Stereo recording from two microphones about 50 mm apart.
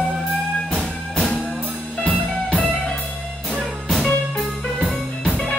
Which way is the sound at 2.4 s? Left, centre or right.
Left.